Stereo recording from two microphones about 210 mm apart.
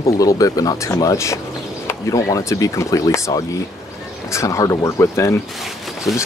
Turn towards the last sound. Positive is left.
turn(degrees=0)  # may be behind; listen again after turning